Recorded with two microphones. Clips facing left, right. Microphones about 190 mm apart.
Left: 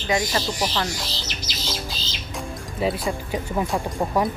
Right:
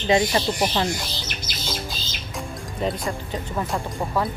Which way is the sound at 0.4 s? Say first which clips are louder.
Right 3 dB; 55° right (ahead or behind).